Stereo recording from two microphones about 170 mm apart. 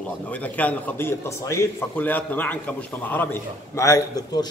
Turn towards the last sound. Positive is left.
turn(degrees=20)  # may be behind; listen again after turning